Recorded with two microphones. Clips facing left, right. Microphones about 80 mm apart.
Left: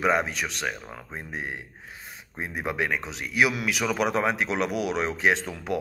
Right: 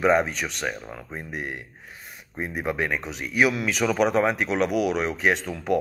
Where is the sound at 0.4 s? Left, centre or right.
Right.